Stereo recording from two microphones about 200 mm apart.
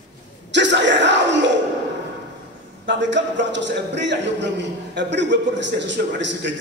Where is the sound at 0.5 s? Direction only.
65° right (ahead or behind).